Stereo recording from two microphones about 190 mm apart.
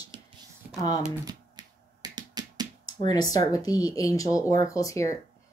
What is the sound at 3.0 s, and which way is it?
Speech, 20° left (ahead or behind).